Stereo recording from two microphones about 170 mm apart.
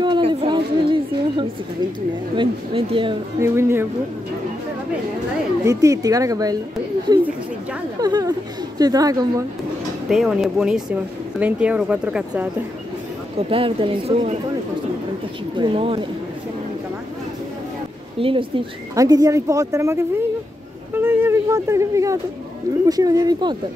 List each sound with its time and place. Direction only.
0.0 s a sound: 25° right (ahead or behind)
2.3 s speech: 30° right (ahead or behind)
3.3 s speech: 15° right (ahead or behind)
5.7 s speech: 20° right (ahead or behind)
8.0 s speech: 20° right (ahead or behind)
10.0 s speech: centre (ahead or behind)
13.5 s speech: 35° right (ahead or behind)
15.5 s speech: 30° right (ahead or behind)
18.2 s speech: 30° right (ahead or behind)
20.9 s a sound: 10° right (ahead or behind)
22.8 s speech: 20° right (ahead or behind)